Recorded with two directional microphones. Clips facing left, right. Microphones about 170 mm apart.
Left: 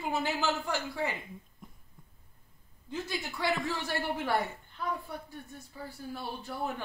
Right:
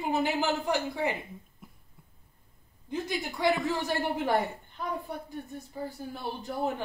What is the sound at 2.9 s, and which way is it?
A woman's voice, 15° right (ahead or behind).